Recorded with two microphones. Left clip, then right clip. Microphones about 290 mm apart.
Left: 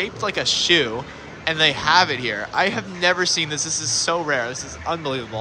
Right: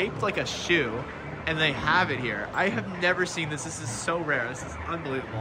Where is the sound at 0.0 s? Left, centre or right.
Centre.